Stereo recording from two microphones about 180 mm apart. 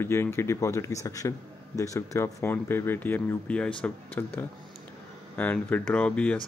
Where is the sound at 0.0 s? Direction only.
15° left (ahead or behind).